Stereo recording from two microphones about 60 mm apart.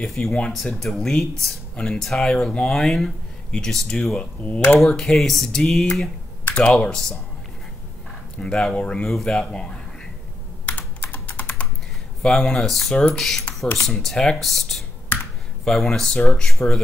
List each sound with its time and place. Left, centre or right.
0.0 s speech: centre
4.2 s speech: left
4.8 s speech: centre
6.4 s typing: centre
6.9 s speech: centre
8.4 s speech: centre
10.6 s computer keyboard: left
12.2 s speech: centre